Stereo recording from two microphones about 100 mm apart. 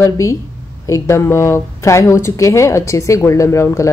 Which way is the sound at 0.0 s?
30° left (ahead or behind).